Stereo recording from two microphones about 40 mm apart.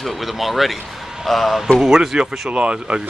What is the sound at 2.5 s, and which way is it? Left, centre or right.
Speech, right.